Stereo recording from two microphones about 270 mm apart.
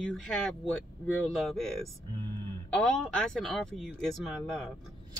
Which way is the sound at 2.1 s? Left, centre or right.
Centre.